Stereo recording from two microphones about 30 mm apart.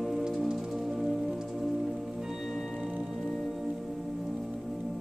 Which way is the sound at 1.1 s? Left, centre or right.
Centre.